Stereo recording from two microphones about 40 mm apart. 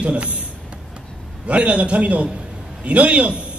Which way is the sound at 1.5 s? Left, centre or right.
Right.